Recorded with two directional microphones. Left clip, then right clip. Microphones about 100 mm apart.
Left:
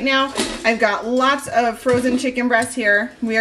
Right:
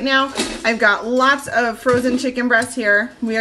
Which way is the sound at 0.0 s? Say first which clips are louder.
Right 1 dB; 20° right (ahead or behind).